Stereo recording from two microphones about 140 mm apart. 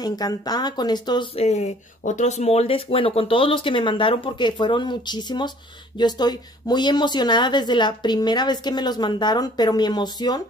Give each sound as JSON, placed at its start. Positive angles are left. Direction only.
{"t": 0.0, "sound": "speech", "side_deg": 30}
{"t": 1.3, "sound": "speech", "side_deg": 50}